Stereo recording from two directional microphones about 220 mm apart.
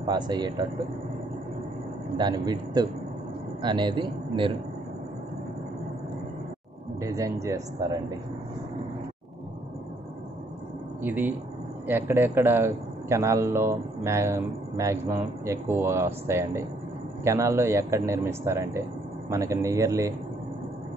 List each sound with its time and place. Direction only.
0.0 s a man's voice: 20° right (ahead or behind)
2.1 s a man's voice: 20° right (ahead or behind)
7.0 s a man's voice: 15° right (ahead or behind)
11.0 s a man's voice: 10° right (ahead or behind)